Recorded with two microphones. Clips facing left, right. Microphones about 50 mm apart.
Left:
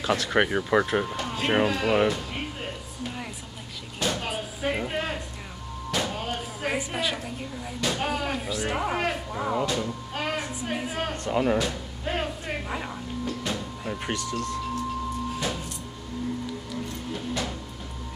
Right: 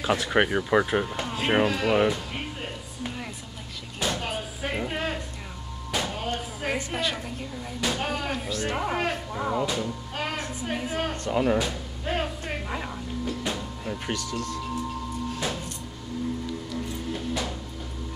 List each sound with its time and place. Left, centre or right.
0.0 s speech: centre
4.1 s a sound: centre
9.8 s music: centre
14.1 s speech: left
17.1 s music: centre